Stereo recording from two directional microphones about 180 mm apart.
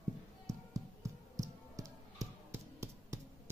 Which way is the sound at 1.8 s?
15° right (ahead or behind).